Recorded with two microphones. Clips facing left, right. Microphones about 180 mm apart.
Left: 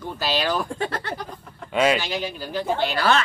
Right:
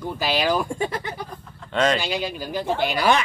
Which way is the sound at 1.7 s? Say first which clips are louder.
Left 1 dB; 10° left (ahead or behind).